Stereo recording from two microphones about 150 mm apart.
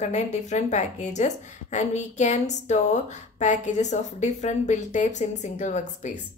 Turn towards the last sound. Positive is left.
turn(degrees=50)  # may be behind; listen again after turning